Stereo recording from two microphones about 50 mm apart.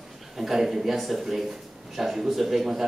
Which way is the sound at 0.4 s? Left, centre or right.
Centre.